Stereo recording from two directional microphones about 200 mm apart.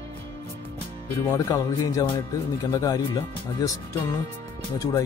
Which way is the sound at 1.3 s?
15° left (ahead or behind).